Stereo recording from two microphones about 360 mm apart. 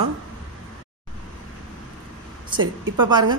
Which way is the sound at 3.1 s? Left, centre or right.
Centre.